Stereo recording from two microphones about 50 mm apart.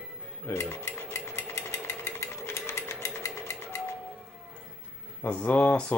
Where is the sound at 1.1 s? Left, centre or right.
Left.